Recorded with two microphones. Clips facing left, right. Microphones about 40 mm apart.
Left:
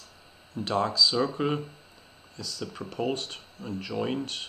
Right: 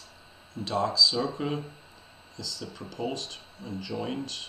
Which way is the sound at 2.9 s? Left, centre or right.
Left.